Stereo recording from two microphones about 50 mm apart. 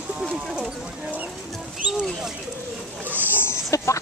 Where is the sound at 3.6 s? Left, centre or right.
Left.